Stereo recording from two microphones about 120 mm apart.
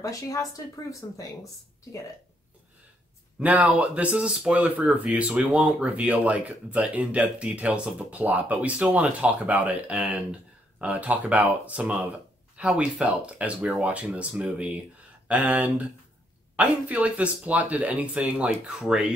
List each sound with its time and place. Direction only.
0.0 s speech: 30° left (ahead or behind)
3.3 s speech: 10° right (ahead or behind)